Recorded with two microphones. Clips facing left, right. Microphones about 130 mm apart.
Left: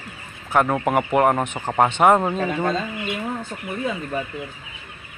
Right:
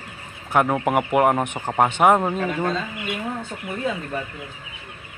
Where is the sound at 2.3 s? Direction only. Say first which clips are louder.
Left 1 dB; 30° left (ahead or behind).